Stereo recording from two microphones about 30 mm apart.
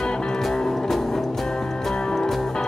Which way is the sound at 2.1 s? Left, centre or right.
Centre.